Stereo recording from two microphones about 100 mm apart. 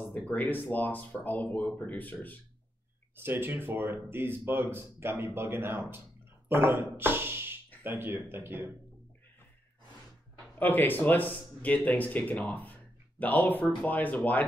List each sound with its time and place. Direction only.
0.3 s speech: 20° left (ahead or behind)
3.2 s speech: 20° right (ahead or behind)
10.6 s speech: 20° left (ahead or behind)